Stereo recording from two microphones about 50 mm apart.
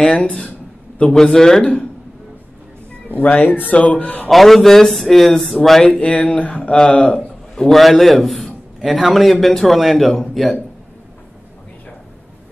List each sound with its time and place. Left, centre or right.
0.0 s a man's voice: centre
3.1 s speech: left
4.3 s a man's voice: centre
5.9 s speech: left
7.5 s a man's voice: centre